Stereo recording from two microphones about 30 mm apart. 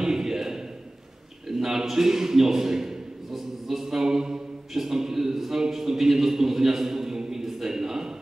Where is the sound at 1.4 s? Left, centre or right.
Centre.